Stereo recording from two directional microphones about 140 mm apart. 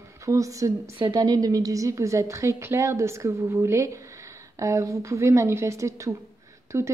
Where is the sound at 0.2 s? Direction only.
25° right (ahead or behind).